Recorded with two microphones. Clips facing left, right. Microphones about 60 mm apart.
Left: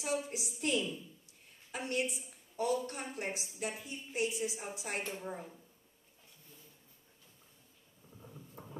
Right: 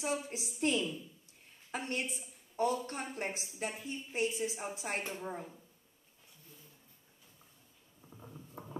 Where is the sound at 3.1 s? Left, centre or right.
Right.